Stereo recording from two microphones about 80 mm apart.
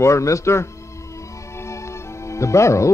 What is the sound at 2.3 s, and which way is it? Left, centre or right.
Speech, left.